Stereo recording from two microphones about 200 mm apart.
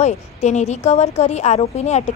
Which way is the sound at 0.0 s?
35° left (ahead or behind).